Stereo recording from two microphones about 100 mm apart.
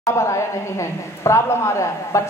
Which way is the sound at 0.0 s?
30° left (ahead or behind).